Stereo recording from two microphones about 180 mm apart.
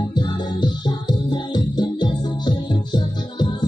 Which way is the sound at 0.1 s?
25° left (ahead or behind).